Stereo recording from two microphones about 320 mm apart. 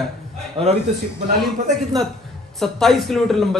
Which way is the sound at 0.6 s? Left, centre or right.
Centre.